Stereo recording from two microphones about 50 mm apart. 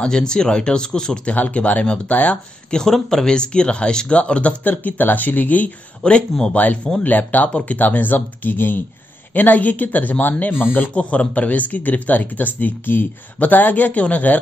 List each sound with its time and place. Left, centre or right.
0.0 s speech: centre
1.2 s speech: left
2.8 s speech: centre; by 5.7 s left
6.0 s speech: centre
6.5 s speech: left